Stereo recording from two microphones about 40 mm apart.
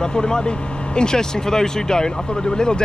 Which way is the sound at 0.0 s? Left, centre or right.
Centre.